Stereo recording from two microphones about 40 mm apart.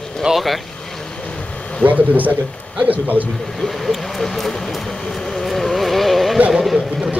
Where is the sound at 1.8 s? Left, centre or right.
Right.